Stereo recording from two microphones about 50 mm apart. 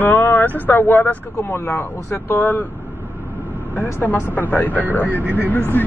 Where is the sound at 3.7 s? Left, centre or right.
Left.